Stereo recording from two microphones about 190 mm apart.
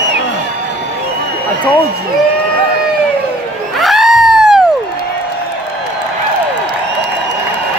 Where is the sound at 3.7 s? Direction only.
Centre (ahead or behind).